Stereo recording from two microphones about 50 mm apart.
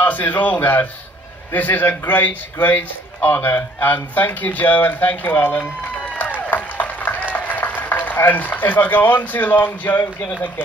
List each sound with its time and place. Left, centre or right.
0.0 s a man's voice: left
6.5 s a sound: left
7.3 s a man's voice: left